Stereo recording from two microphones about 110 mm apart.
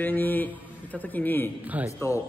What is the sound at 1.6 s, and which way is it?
Speech, 15° right (ahead or behind).